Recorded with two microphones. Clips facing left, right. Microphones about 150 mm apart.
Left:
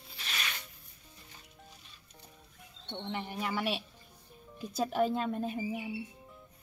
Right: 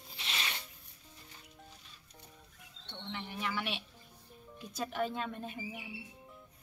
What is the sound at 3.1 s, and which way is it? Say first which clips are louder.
Speech: left 3 dB; 45° left (ahead or behind).